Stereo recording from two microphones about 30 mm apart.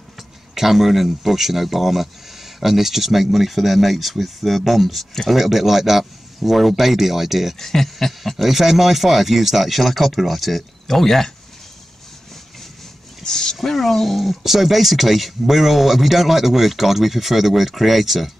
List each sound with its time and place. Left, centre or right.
0.6 s speech: centre
7.5 s speech: centre
8.4 s speech: centre
13.2 s a sound: centre
13.6 s speech: centre